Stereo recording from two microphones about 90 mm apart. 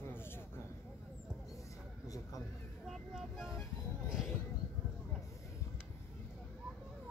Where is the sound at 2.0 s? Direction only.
40° left (ahead or behind).